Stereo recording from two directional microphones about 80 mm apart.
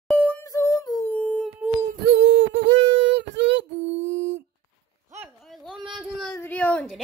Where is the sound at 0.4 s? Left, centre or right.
Left.